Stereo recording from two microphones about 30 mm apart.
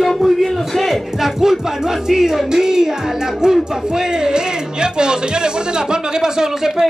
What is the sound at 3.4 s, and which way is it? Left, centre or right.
Speech, right.